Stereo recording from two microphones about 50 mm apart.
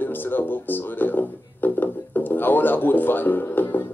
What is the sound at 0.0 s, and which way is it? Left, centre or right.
Speech, left.